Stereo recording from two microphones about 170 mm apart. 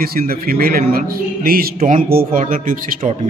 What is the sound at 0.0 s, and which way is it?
A man's voice, 60° right (ahead or behind).